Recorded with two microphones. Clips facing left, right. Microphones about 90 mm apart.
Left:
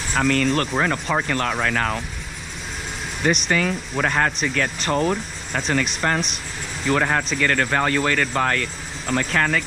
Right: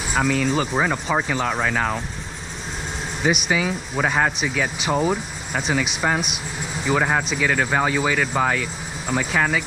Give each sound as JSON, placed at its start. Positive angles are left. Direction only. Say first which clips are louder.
{"t": 0.1, "sound": "speech", "louder": "left 1 dB", "side_deg": -5}
{"t": 3.2, "sound": "speech", "louder": "left 1 dB", "side_deg": -5}